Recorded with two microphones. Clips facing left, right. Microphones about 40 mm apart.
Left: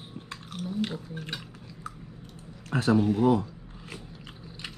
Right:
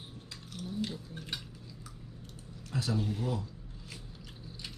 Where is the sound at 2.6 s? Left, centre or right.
Left.